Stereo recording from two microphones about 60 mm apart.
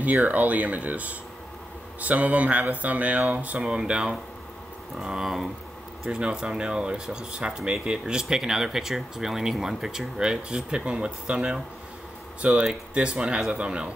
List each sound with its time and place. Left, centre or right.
0.0 s speech: right
3.6 s speech: centre